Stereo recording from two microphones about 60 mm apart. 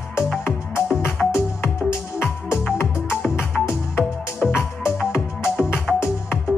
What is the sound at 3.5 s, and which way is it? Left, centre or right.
Music, left.